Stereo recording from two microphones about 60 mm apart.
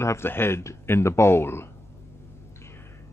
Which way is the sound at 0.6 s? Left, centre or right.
Left.